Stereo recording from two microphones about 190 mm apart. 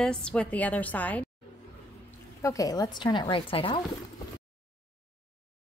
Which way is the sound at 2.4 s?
15° left (ahead or behind).